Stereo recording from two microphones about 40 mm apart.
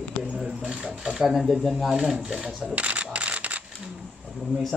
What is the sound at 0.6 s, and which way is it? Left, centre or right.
Speech, right.